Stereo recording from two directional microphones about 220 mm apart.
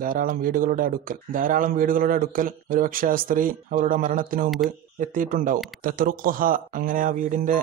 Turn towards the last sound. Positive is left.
turn(degrees=-35)  # may be behind; listen again after turning